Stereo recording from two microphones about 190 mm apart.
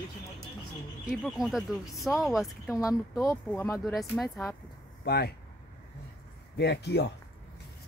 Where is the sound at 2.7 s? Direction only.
15° left (ahead or behind).